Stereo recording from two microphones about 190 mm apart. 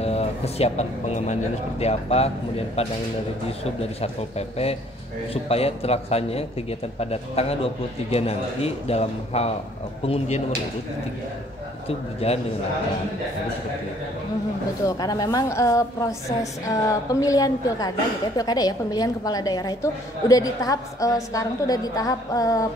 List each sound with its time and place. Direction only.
0.0 s speech: 35° left (ahead or behind)
4.0 s speech: 30° left (ahead or behind)
11.9 s speech: 30° left (ahead or behind)
14.9 s a woman's voice: 20° left (ahead or behind)